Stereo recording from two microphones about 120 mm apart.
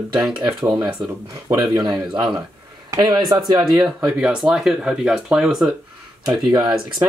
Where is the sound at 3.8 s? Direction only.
5° right (ahead or behind).